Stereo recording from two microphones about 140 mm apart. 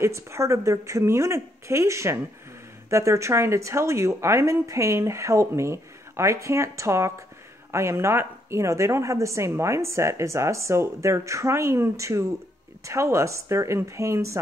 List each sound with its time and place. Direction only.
0.0 s speech: 20° right (ahead or behind)